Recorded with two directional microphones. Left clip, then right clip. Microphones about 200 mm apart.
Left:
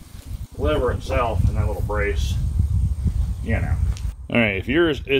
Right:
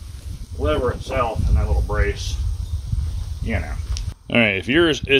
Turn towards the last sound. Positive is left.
turn(degrees=-15)  # may be behind; listen again after turning